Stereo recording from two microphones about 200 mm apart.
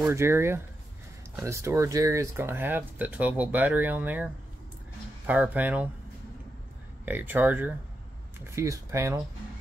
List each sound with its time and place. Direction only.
0.0 s speech: 15° right (ahead or behind)
7.1 s speech: 10° right (ahead or behind)